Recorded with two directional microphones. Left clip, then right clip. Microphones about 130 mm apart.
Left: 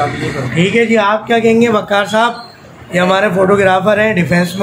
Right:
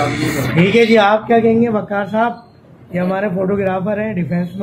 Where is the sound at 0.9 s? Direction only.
10° right (ahead or behind).